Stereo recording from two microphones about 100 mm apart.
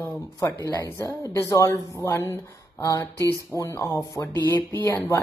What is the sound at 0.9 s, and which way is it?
Speech, 35° left (ahead or behind).